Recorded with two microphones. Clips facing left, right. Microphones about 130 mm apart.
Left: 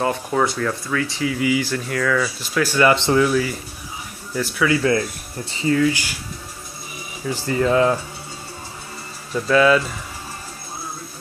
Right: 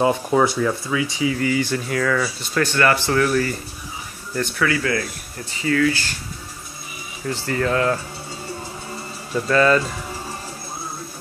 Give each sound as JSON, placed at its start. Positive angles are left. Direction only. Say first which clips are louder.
{"t": 0.1, "sound": "speech", "louder": "right 3 dB", "side_deg": -10}
{"t": 2.9, "sound": "speech", "louder": "left 2 dB", "side_deg": 20}
{"t": 3.3, "sound": "speech", "louder": "even", "side_deg": 5}
{"t": 4.6, "sound": "speech", "louder": "left 6 dB", "side_deg": 25}
{"t": 7.2, "sound": "speech", "louder": "left 2 dB", "side_deg": 15}
{"t": 9.3, "sound": "speech", "louder": "left 1 dB", "side_deg": 5}